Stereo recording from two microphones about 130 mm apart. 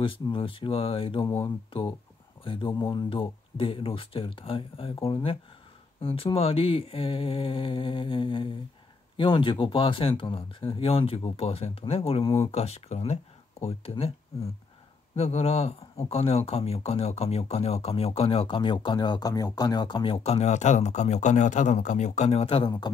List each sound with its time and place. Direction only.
0.0 s speech: 40° left (ahead or behind)
1.2 s speech: 15° left (ahead or behind)
1.7 s speech: 40° left (ahead or behind)
22.7 s speech: 35° left (ahead or behind)